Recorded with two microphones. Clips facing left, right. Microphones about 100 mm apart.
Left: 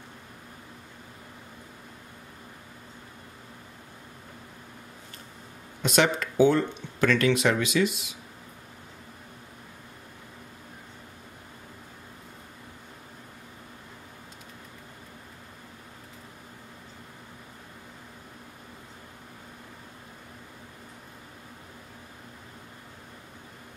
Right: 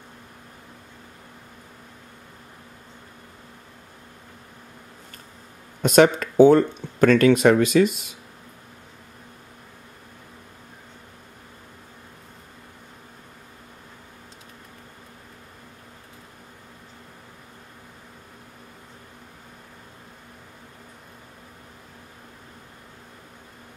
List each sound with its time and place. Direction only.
5.8 s speech: 45° right (ahead or behind)